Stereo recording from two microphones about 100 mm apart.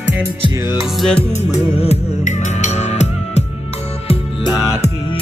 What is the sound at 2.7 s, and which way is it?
Music, 90° left.